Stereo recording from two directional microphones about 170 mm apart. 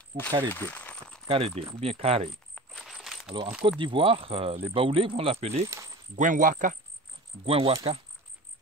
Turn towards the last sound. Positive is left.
turn(degrees=-35)  # may be behind; listen again after turning